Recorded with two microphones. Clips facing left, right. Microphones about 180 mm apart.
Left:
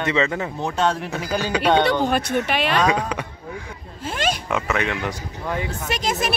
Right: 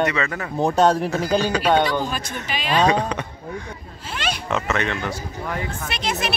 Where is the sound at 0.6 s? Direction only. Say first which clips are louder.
Right 7 dB; 35° right (ahead or behind).